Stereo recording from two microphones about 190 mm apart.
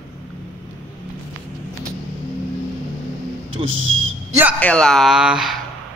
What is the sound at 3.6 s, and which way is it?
Speech, 90° right.